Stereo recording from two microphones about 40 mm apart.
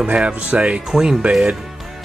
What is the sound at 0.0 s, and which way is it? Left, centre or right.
Speech, right.